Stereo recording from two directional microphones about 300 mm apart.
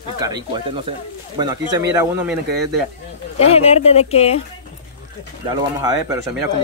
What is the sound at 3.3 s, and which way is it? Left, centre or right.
Speech, left.